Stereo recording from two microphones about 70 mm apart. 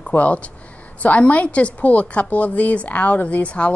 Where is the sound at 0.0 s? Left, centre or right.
Left.